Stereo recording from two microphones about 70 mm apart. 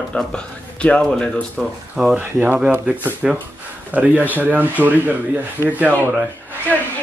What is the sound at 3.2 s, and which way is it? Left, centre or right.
Speech, centre.